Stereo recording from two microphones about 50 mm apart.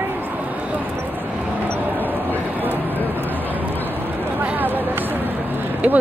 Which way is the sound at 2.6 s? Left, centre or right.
Right.